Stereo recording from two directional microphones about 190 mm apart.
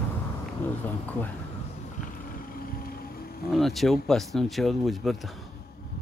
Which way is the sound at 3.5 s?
Centre (ahead or behind).